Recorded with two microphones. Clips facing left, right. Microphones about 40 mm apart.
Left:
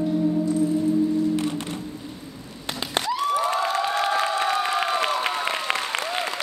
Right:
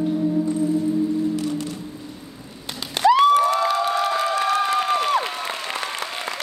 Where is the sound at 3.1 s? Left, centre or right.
Right.